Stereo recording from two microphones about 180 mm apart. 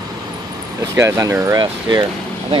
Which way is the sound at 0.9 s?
15° right (ahead or behind).